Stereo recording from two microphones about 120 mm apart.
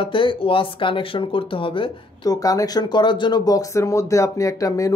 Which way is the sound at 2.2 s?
30° left (ahead or behind).